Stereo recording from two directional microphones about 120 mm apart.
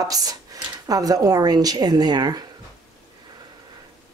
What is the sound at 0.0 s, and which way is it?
Speech, 30° right (ahead or behind).